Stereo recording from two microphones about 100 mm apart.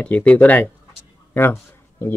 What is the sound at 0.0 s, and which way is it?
Speech, 15° left (ahead or behind).